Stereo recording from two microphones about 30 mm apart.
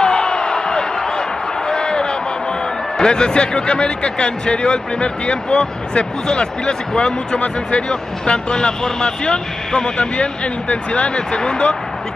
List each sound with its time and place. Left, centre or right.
0.0 s a sound: left
3.0 s a man's voice: left
6.2 s speech: left
7.3 s speech: left
7.9 s a man's voice: left
10.1 s a man's voice: left